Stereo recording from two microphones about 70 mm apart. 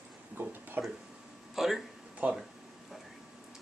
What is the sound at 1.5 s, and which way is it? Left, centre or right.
Speech, centre.